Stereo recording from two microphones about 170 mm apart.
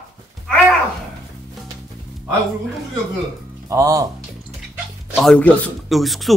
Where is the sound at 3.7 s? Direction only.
20° right (ahead or behind).